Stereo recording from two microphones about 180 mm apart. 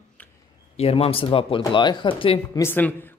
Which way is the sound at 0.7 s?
35° left (ahead or behind).